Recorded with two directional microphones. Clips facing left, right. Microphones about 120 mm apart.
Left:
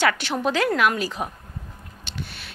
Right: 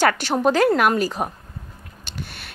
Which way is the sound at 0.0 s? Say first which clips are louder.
Right 4 dB; 40° right (ahead or behind).